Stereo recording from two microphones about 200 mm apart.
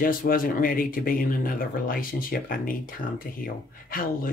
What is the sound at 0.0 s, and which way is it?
Speech, 45° left (ahead or behind).